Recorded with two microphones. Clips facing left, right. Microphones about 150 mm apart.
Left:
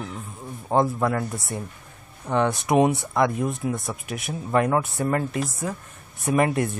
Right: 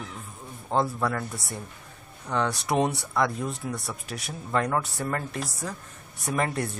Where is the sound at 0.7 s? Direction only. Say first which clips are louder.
Left 4 dB; 20° left (ahead or behind).